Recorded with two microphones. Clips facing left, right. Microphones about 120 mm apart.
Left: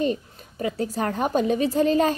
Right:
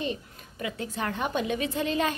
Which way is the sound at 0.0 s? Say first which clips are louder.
Left 8 dB; 40° left (ahead or behind).